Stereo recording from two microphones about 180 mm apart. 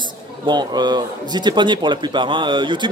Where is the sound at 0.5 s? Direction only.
25° right (ahead or behind).